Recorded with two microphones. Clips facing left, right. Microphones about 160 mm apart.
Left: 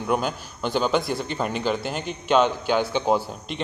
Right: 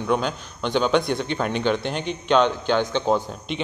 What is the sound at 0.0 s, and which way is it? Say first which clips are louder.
A man's voice: right 1 dB; 5° left (ahead or behind).